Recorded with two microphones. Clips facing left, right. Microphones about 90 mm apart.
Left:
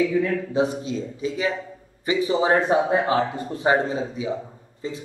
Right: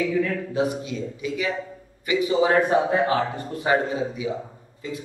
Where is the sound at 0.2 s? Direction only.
25° left (ahead or behind).